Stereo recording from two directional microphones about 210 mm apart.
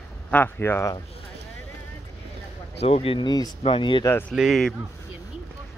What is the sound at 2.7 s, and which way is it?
Speech, 30° left (ahead or behind).